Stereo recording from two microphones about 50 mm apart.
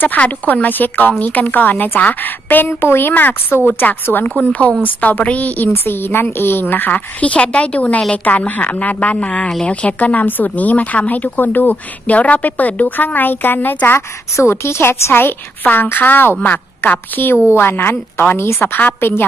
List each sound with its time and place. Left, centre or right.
0.0 s a woman's voice: left
4.4 s a woman's voice: left
5.7 s a woman's voice: left
6.2 s a woman's voice: left
13.8 s a woman's voice: left
15.1 s a woman's voice: left
17.6 s a woman's voice: left